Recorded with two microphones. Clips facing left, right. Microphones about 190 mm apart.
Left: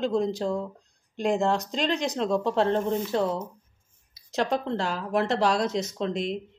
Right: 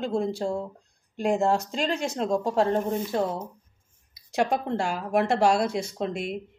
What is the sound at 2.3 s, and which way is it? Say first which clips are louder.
Speech: right 1 dB; 40° right (ahead or behind).